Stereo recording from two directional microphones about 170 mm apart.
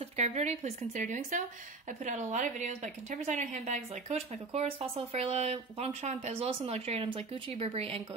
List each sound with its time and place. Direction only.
0.2 s a woman's voice: 40° right (ahead or behind)